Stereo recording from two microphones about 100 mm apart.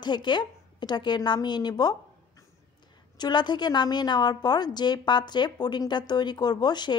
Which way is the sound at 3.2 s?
45° left (ahead or behind).